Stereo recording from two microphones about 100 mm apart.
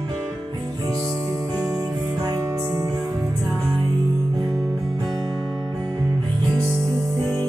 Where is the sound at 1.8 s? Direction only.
35° right (ahead or behind).